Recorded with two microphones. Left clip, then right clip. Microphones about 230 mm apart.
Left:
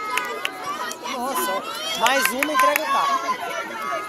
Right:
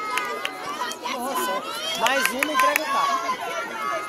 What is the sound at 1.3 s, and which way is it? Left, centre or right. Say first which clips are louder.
Speech: left 1 dB; left.